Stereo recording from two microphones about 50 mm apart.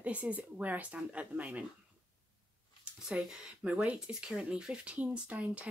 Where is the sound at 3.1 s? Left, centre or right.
Centre.